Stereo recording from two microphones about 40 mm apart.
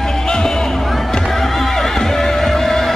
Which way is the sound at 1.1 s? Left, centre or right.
Centre.